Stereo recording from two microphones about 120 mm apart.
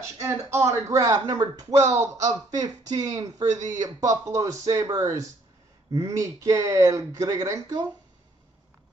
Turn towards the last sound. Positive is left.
turn(degrees=-30)  # may be behind; listen again after turning